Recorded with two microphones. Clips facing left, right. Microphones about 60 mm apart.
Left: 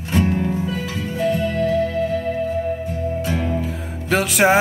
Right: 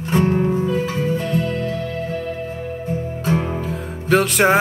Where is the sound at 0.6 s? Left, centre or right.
Right.